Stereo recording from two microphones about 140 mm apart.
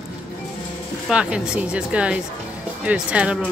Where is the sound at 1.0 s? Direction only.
5° right (ahead or behind).